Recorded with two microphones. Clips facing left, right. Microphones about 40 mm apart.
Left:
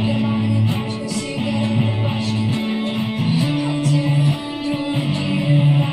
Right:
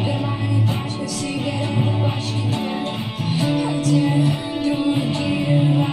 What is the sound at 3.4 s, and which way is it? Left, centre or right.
Music, left.